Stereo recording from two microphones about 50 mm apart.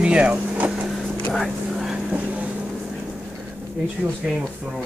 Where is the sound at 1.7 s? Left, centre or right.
Centre.